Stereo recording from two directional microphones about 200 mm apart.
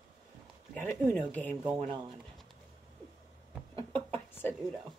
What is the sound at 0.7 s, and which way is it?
Speech, 10° left (ahead or behind).